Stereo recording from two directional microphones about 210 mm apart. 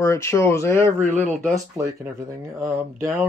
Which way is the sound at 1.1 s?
35° right (ahead or behind).